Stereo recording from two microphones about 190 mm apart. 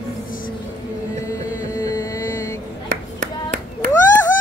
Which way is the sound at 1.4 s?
15° left (ahead or behind).